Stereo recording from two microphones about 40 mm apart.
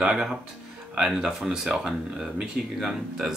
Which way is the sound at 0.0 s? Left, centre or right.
Right.